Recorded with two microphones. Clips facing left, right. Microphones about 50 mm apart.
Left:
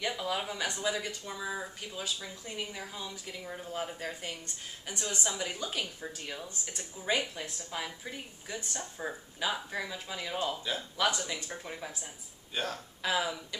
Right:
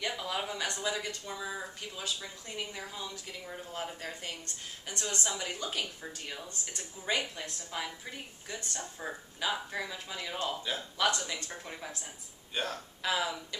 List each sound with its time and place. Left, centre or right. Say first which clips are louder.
0.2 s speech: left 1 dB; centre